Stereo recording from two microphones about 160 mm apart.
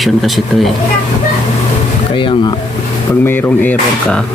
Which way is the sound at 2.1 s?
30° left (ahead or behind).